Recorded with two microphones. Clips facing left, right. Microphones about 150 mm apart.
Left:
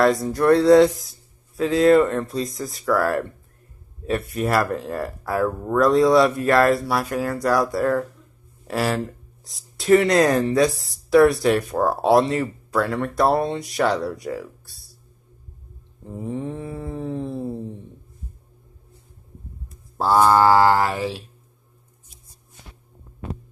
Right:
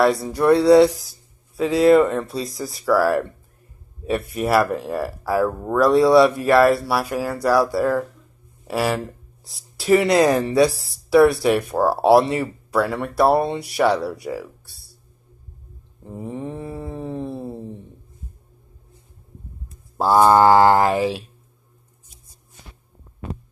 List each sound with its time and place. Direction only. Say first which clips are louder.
0.0 s speech: even; 5° right (ahead or behind)
16.1 s mantra: left 1 dB; 5° right (ahead or behind)
20.0 s mantra: right 2 dB; 15° right (ahead or behind)